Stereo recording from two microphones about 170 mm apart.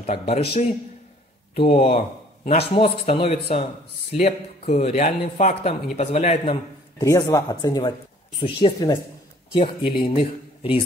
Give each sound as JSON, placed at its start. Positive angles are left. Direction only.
{"t": 0.0, "sound": "a man's voice", "side_deg": 40}
{"t": 1.7, "sound": "a man's voice", "side_deg": 35}
{"t": 2.0, "sound": "a sound", "side_deg": 45}
{"t": 2.7, "sound": "a man's voice", "side_deg": 30}
{"t": 7.1, "sound": "a man's voice", "side_deg": 20}